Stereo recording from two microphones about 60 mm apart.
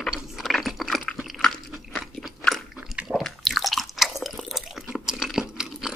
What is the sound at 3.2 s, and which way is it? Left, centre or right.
Chewing, centre.